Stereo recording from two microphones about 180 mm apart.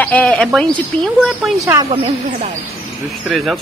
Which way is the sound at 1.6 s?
20° right (ahead or behind).